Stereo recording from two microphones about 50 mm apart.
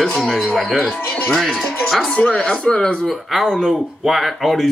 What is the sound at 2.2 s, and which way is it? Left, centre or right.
Speech, left.